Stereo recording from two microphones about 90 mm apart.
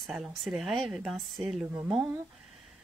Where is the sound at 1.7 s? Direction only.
20° right (ahead or behind).